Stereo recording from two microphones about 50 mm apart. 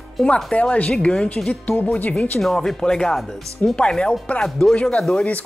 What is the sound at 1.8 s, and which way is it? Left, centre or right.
Speech, left.